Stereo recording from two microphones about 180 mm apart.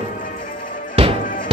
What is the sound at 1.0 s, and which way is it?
Music, 30° right (ahead or behind).